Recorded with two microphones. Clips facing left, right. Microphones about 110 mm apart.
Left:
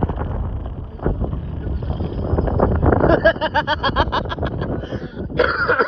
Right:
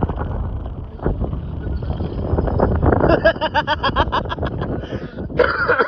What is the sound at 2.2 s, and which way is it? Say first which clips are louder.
Wind noise: even; 15° right (ahead or behind).